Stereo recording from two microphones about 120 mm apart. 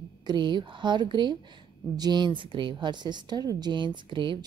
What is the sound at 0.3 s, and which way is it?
A woman's voice, 40° right (ahead or behind).